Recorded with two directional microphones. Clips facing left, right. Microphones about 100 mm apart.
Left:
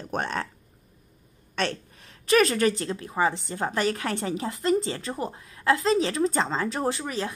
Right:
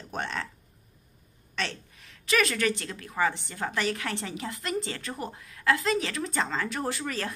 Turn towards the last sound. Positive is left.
turn(degrees=20)  # may be behind; listen again after turning